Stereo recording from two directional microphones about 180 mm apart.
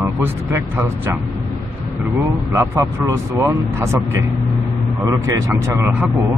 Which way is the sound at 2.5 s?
15° right (ahead or behind).